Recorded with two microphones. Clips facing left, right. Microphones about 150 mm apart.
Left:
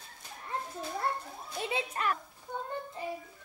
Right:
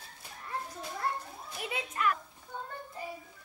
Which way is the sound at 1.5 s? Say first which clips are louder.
Left 4 dB; 25° left (ahead or behind).